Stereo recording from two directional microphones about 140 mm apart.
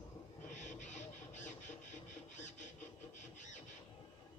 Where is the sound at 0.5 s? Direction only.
60° left (ahead or behind).